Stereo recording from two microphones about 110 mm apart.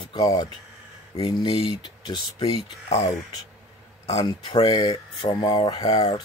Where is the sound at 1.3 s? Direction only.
50° left (ahead or behind).